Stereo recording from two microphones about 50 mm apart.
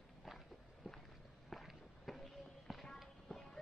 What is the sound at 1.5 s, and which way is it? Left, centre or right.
Walk, centre.